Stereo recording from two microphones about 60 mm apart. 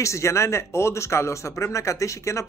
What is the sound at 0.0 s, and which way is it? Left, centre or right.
Speech, left.